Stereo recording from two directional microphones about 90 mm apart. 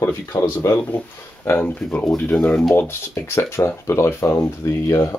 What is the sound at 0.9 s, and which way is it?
Speech, 20° left (ahead or behind).